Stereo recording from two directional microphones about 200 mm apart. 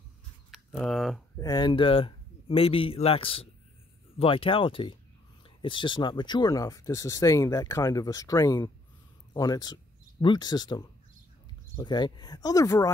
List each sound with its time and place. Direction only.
0.5 s speech: centre (ahead or behind)
1.4 s speech: 20° left (ahead or behind)